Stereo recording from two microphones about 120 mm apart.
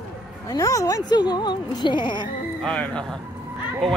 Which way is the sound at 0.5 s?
30° left (ahead or behind).